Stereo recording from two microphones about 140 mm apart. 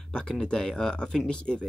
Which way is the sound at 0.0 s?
5° left (ahead or behind).